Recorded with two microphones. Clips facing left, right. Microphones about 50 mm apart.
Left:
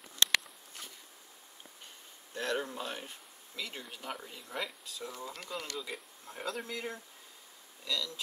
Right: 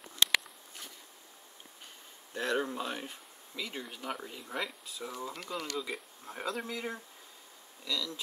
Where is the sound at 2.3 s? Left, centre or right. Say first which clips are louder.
Right 3 dB; centre.